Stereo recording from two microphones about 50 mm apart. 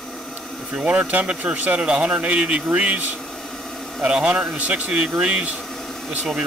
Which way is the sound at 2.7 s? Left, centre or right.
Right.